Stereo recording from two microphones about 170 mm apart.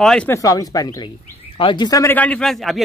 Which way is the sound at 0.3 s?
20° left (ahead or behind).